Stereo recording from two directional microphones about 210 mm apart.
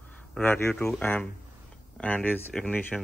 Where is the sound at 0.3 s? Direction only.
10° left (ahead or behind).